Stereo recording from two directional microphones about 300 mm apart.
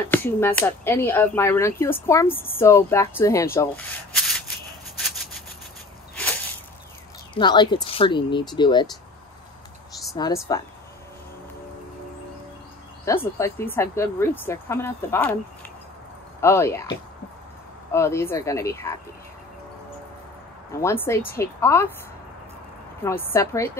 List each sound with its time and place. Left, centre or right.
0.1 s speech: centre
4.9 s a sound: centre
7.3 s speech: centre
10.1 s speech: centre
13.0 s speech: centre
16.3 s speech: centre
17.9 s speech: centre
20.8 s speech: centre
23.0 s speech: centre